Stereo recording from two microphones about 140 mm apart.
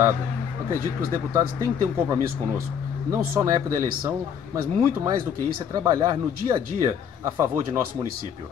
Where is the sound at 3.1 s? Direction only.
20° right (ahead or behind).